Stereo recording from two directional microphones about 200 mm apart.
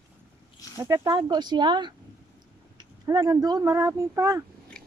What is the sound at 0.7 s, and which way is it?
Speech, 15° right (ahead or behind).